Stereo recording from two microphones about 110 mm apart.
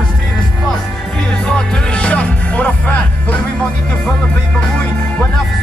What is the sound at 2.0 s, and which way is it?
Music, 10° left (ahead or behind).